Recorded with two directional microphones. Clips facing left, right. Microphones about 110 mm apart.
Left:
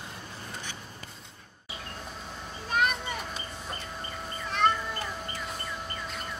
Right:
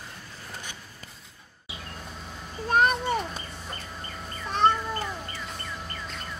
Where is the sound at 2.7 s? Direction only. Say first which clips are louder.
Right 6 dB; 40° right (ahead or behind).